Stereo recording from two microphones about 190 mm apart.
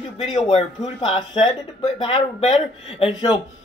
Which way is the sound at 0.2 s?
35° left (ahead or behind).